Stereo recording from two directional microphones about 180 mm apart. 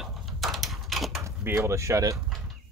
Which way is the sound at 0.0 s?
Centre (ahead or behind).